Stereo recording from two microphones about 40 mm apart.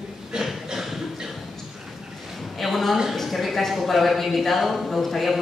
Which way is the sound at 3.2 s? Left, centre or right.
Centre.